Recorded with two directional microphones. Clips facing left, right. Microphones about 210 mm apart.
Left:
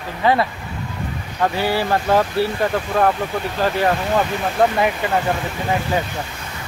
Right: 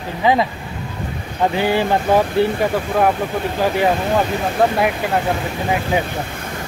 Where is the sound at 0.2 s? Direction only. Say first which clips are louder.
Right 1 dB; 15° right (ahead or behind).